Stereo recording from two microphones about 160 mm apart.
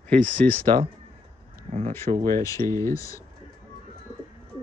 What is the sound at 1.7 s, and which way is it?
Speech, 45° right (ahead or behind).